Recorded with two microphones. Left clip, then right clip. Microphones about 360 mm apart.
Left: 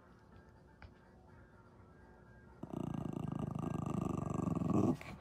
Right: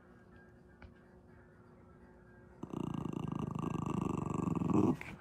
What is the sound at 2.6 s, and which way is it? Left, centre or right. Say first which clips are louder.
Purr: right 2 dB; centre.